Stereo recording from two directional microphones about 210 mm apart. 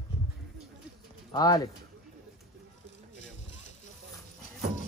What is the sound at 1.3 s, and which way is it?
Speech, 20° left (ahead or behind).